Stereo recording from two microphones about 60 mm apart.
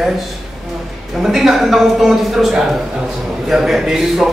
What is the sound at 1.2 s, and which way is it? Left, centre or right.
Speech, centre.